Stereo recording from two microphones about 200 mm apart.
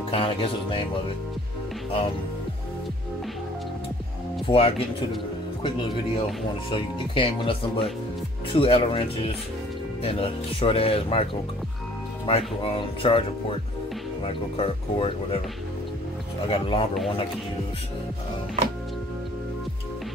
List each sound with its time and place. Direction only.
0.1 s speech: 25° left (ahead or behind)
1.9 s speech: 25° left (ahead or behind)
4.5 s speech: 25° left (ahead or behind)
6.7 s speech: 25° left (ahead or behind)
12.3 s speech: 30° left (ahead or behind)
14.2 s speech: 30° left (ahead or behind)
16.4 s speech: 25° left (ahead or behind)